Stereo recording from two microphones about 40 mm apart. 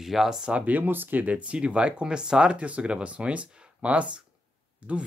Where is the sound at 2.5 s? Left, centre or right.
Right.